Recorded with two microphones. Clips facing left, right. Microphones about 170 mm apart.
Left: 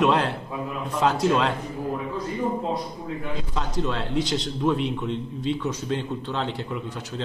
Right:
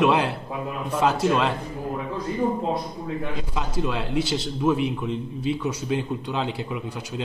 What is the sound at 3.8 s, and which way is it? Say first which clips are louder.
A man's voice: even; 5° right (ahead or behind).